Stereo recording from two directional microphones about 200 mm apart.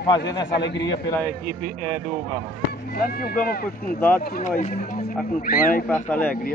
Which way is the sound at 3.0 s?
50° left (ahead or behind).